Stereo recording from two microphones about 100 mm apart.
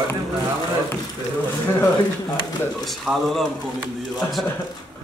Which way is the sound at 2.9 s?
Centre (ahead or behind).